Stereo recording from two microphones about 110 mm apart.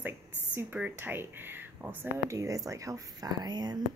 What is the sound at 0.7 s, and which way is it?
A woman's voice, 15° right (ahead or behind).